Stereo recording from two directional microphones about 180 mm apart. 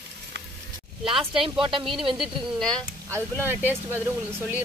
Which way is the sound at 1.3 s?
30° right (ahead or behind).